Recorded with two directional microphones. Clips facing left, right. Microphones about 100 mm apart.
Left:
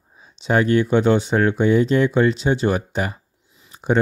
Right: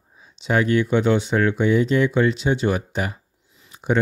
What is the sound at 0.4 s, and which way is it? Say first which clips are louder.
Speech: left 2 dB; 35° left (ahead or behind).